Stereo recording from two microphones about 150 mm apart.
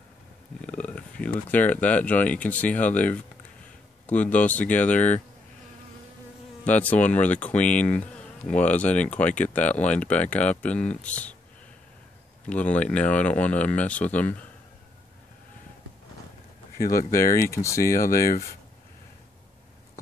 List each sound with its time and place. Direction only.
0.6 s speech: 5° left (ahead or behind)
6.6 s speech: 10° left (ahead or behind)
12.4 s speech: 10° left (ahead or behind)
17.5 s speech: 20° left (ahead or behind)